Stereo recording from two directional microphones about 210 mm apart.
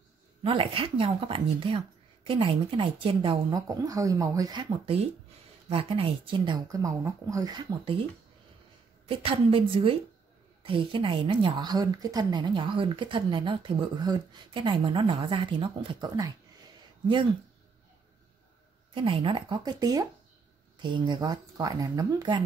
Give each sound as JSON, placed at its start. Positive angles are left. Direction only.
{"t": 0.4, "sound": "a woman's voice", "side_deg": -25}
{"t": 9.0, "sound": "a woman's voice", "side_deg": -25}
{"t": 18.9, "sound": "a woman's voice", "side_deg": -25}